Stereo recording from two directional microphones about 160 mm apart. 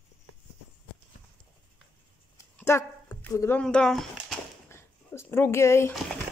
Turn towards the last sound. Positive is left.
turn(degrees=15)  # may be behind; listen again after turning